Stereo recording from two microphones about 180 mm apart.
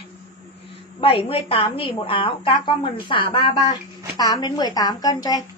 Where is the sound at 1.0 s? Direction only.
30° left (ahead or behind).